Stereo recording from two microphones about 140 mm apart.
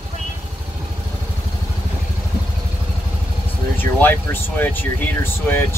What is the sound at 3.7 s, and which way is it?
Speech, 15° left (ahead or behind).